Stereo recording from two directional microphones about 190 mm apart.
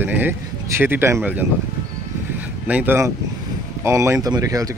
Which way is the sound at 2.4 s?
10° right (ahead or behind).